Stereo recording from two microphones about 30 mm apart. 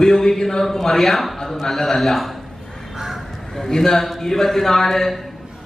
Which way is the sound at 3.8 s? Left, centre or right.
Centre.